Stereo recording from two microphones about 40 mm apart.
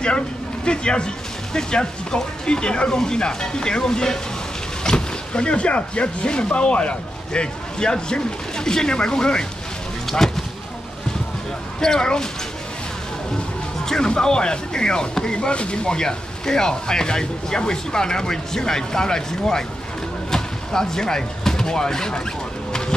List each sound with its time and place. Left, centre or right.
0.7 s speech: left
11.8 s speech: centre
13.8 s speech: centre
20.2 s a sound: centre